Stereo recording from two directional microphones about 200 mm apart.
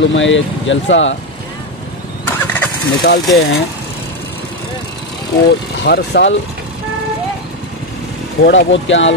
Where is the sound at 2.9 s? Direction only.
50° left (ahead or behind).